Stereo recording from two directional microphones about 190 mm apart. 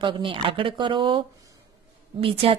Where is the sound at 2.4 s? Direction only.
30° right (ahead or behind).